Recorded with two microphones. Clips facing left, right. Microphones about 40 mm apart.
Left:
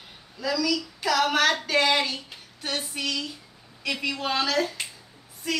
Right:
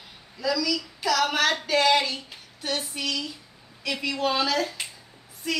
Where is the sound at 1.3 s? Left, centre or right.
Centre.